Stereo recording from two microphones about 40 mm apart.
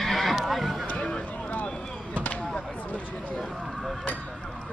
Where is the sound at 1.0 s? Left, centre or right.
Left.